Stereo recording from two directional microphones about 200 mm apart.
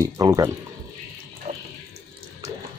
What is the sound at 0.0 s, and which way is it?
Speech, 15° right (ahead or behind).